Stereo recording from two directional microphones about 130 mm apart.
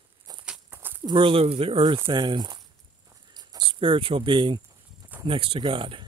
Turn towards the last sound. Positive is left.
turn(degrees=-40)  # may be behind; listen again after turning